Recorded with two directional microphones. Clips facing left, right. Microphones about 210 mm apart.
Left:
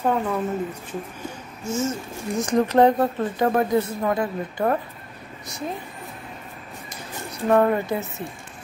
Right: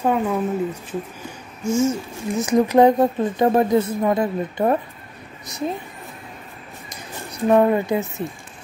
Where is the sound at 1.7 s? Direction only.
10° right (ahead or behind).